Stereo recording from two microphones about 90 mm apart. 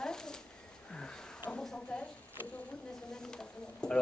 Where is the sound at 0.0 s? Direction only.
5° left (ahead or behind).